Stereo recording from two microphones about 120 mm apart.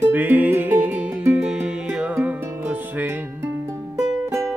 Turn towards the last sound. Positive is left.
turn(degrees=-20)  # may be behind; listen again after turning